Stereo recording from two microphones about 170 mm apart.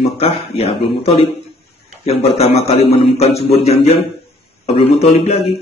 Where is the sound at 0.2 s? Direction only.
35° left (ahead or behind).